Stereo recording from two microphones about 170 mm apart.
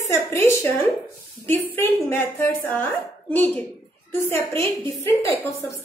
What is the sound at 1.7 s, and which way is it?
A woman's voice, 10° left (ahead or behind).